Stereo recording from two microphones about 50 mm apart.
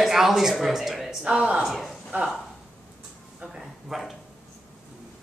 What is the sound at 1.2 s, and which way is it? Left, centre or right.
Speech, right.